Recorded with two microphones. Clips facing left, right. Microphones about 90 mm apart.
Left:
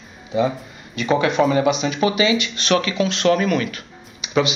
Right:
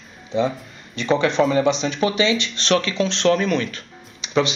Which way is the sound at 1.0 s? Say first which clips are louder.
Left 1 dB; 10° left (ahead or behind).